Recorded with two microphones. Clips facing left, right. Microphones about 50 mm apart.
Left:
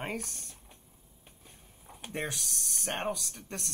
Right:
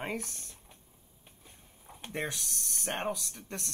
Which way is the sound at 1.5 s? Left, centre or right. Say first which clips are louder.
Even; centre.